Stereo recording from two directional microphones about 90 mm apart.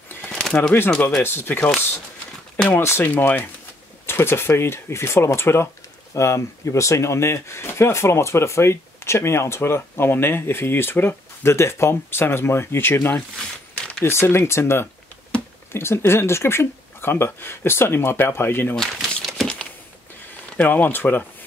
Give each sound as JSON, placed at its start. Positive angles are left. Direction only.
{"t": 0.3, "sound": "a sound", "side_deg": 5}
{"t": 0.8, "sound": "speech", "side_deg": 15}
{"t": 1.2, "sound": "speech", "side_deg": 25}
{"t": 2.8, "sound": "speech", "side_deg": 30}
{"t": 13.1, "sound": "a sound", "side_deg": 10}
{"t": 14.0, "sound": "speech", "side_deg": 30}
{"t": 18.8, "sound": "speech", "side_deg": 0}
{"t": 19.2, "sound": "a sound", "side_deg": 5}
{"t": 20.5, "sound": "speech", "side_deg": 20}